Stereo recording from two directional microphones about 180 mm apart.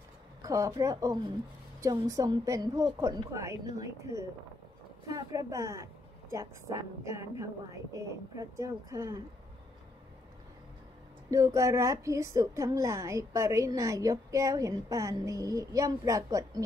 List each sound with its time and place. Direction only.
0.4 s a woman's voice: 20° right (ahead or behind)
11.2 s a woman's voice: 15° right (ahead or behind)